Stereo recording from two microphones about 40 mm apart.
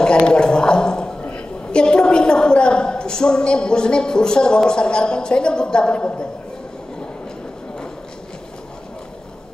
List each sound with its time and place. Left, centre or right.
0.0 s gargling: left
1.3 s a woman's voice: left